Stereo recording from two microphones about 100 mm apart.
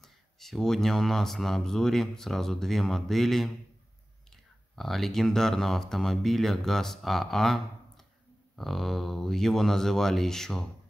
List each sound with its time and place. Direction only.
0.0 s speech: 5° left (ahead or behind)
4.7 s speech: centre (ahead or behind)